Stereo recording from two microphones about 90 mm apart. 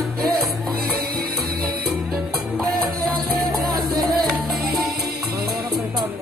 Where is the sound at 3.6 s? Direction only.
50° right (ahead or behind).